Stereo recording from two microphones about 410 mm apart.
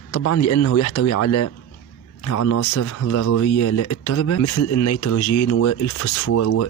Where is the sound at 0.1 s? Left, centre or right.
Left.